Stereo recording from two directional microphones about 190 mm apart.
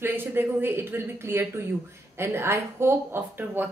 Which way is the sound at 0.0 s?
10° right (ahead or behind).